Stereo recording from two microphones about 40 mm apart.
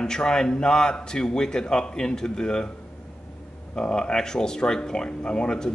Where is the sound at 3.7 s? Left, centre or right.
Centre.